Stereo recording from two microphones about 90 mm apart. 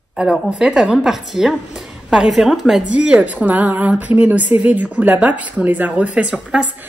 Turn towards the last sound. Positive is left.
turn(degrees=-10)  # may be behind; listen again after turning